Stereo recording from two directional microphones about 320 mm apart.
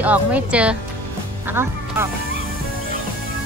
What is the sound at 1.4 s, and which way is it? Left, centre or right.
Speech, centre.